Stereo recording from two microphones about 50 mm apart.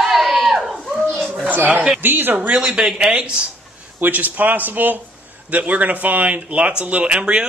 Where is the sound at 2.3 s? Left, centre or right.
Right.